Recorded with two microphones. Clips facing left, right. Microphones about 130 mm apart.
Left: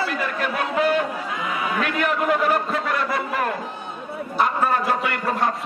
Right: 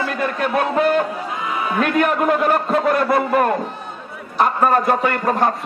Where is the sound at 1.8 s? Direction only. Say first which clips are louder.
Right 6 dB; 45° right (ahead or behind).